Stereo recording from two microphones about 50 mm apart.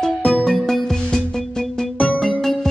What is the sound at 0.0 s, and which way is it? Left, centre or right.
Music, centre.